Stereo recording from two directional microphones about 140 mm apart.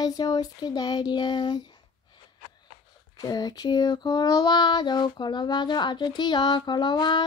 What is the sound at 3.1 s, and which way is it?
Female singing, 30° left (ahead or behind).